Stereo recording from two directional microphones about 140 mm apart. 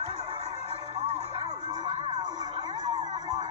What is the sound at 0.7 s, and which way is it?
Music, 50° right (ahead or behind).